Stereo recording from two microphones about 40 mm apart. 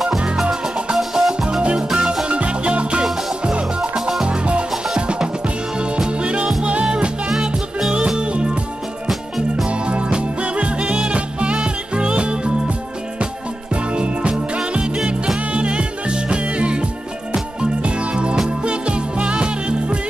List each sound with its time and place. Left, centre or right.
0.9 s music: centre
2.2 s music: right
9.7 s music: right
13.9 s music: right
15.5 s music: right